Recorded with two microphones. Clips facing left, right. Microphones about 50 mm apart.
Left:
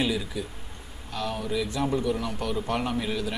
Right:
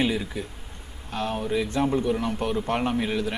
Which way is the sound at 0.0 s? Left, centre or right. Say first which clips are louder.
Right 2 dB; right.